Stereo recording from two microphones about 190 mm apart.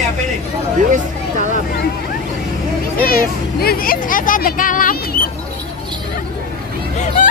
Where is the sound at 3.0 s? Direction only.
50° left (ahead or behind).